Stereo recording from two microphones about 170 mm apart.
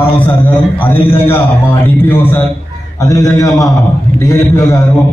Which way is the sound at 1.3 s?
10° left (ahead or behind).